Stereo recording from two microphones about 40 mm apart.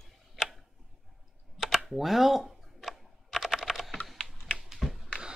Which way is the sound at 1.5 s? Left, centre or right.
Centre.